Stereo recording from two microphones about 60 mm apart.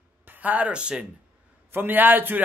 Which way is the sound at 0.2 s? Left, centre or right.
Right.